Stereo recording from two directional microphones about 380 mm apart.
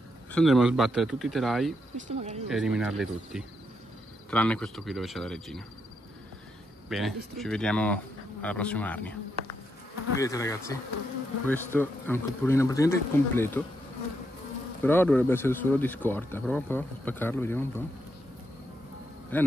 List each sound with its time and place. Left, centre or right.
0.3 s speech: centre
2.0 s speech: centre
2.5 s speech: centre
6.9 s speech: centre
10.2 s speech: centre
14.8 s speech: centre
19.3 s speech: centre